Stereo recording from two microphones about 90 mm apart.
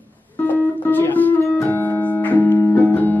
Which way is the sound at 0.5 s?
20° left (ahead or behind).